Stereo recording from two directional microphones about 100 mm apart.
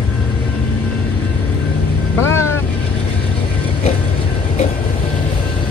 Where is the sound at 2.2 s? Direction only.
25° left (ahead or behind).